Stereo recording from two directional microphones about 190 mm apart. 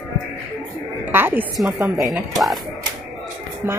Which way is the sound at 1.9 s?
Centre (ahead or behind).